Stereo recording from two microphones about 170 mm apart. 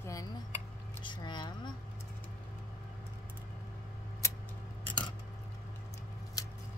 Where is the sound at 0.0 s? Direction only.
20° left (ahead or behind).